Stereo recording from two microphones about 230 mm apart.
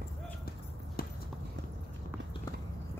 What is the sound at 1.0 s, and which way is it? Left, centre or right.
Clip-clop, left.